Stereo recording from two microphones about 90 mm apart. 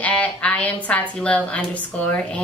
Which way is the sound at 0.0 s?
15° left (ahead or behind).